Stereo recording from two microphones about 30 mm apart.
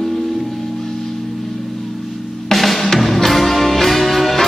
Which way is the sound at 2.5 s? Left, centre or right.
Centre.